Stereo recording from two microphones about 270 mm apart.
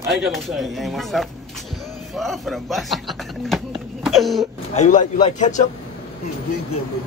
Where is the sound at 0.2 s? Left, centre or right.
Centre.